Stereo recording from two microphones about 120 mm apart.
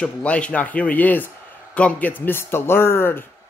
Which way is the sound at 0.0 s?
10° left (ahead or behind).